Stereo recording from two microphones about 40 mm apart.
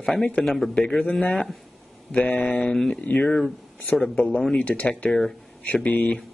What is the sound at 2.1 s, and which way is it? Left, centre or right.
Speech, left.